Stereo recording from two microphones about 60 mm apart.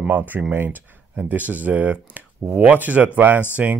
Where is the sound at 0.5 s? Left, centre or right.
Right.